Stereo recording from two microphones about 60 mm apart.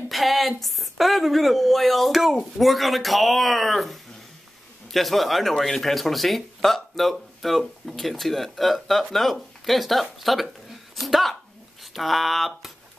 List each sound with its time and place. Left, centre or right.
0.1 s speech: centre